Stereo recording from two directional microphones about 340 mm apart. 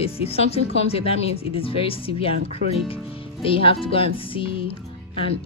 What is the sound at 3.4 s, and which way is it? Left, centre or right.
Speech, centre.